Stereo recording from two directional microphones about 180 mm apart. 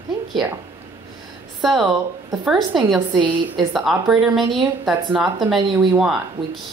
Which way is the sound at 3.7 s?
Centre (ahead or behind).